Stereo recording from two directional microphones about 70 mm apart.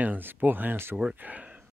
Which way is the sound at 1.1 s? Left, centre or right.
Centre.